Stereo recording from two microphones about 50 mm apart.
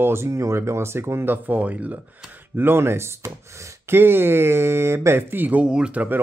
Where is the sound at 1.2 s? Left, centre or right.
Right.